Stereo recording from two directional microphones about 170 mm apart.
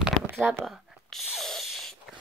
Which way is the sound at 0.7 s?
Centre (ahead or behind).